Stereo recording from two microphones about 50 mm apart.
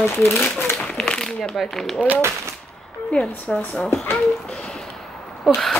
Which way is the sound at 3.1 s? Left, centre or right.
Left.